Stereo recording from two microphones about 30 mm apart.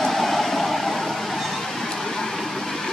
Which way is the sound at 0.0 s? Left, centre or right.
Centre.